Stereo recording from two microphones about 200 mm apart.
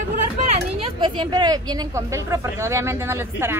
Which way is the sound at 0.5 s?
25° right (ahead or behind).